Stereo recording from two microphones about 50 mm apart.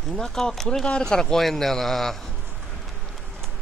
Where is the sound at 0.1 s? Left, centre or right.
Centre.